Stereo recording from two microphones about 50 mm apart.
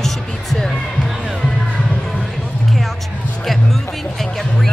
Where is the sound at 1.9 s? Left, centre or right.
Centre.